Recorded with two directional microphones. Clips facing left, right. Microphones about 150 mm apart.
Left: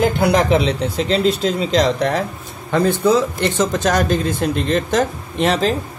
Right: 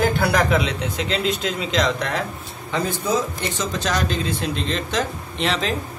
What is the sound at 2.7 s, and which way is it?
Speech, 60° left (ahead or behind).